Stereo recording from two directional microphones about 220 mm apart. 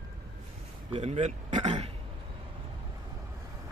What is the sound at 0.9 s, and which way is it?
Speech, 30° right (ahead or behind).